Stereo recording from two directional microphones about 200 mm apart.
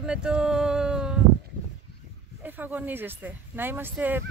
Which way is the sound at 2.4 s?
10° right (ahead or behind).